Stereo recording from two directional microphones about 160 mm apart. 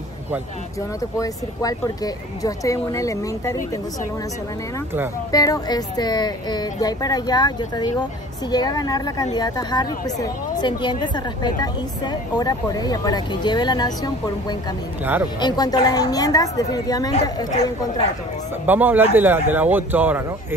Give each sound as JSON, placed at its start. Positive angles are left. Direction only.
{"t": 1.1, "sound": "speech", "side_deg": 20}
{"t": 5.3, "sound": "speech", "side_deg": 20}
{"t": 18.7, "sound": "speech", "side_deg": -10}